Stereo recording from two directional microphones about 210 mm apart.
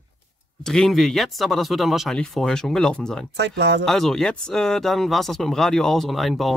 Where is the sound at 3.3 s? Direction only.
55° right (ahead or behind).